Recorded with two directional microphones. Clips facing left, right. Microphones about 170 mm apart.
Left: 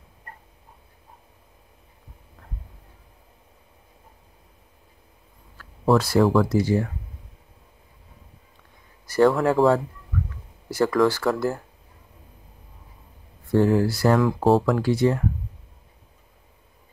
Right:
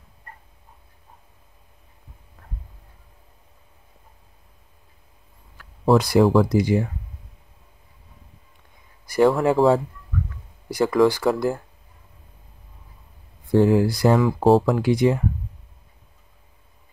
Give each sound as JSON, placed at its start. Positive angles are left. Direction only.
{"t": 5.9, "sound": "speech", "side_deg": -15}
{"t": 9.0, "sound": "speech", "side_deg": -15}
{"t": 10.7, "sound": "speech", "side_deg": -15}
{"t": 13.5, "sound": "speech", "side_deg": -15}
{"t": 14.1, "sound": "speech", "side_deg": 0}
{"t": 14.6, "sound": "speech", "side_deg": -15}